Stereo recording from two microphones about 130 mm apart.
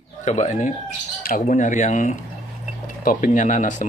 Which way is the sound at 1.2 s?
90° left.